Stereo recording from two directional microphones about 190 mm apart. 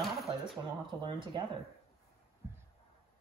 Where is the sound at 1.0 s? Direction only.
25° right (ahead or behind).